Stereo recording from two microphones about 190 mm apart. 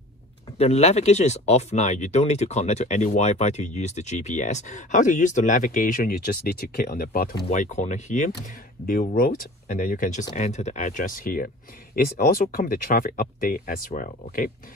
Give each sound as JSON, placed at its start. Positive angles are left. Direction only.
{"t": 0.6, "sound": "speech", "side_deg": 35}